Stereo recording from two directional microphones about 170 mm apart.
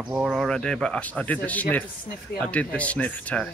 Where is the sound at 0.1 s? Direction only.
5° right (ahead or behind).